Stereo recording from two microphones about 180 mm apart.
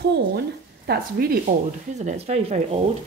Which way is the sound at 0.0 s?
65° right (ahead or behind).